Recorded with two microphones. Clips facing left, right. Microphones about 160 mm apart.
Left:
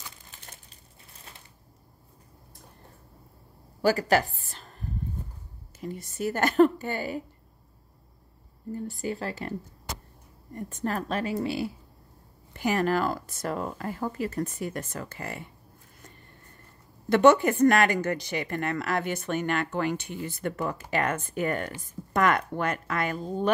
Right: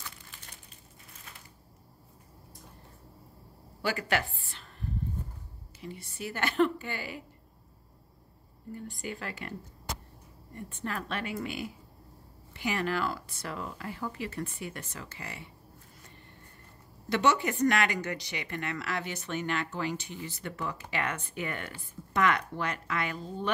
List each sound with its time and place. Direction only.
3.8 s a sound: 40° left (ahead or behind)
5.8 s speech: 45° left (ahead or behind)
8.7 s a woman's voice: 40° left (ahead or behind)
10.5 s a woman's voice: 40° left (ahead or behind)
17.1 s speech: 50° left (ahead or behind)